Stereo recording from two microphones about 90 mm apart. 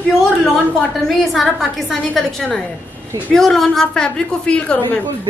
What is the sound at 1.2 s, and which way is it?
A woman's voice, centre (ahead or behind).